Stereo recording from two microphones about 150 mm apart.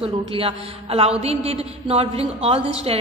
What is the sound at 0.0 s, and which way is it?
A woman's voice, 40° right (ahead or behind).